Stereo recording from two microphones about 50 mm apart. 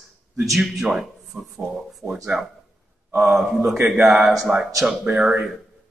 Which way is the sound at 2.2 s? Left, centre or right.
Centre.